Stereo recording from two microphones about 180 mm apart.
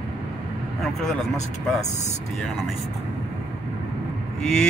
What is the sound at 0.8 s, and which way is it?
Speech, centre (ahead or behind).